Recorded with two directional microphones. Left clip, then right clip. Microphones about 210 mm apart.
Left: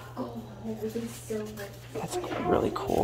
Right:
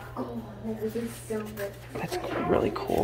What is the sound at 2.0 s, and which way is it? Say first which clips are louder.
Speech: right 1 dB; 10° left (ahead or behind).